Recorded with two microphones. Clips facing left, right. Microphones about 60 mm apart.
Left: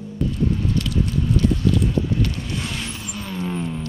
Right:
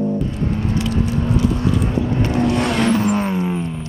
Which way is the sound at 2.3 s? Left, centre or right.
Right.